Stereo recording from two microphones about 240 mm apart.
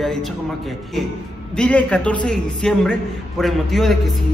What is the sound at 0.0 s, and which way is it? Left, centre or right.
Speech, centre.